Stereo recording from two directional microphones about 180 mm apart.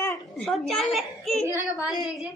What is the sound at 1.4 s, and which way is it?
Speech, 15° right (ahead or behind).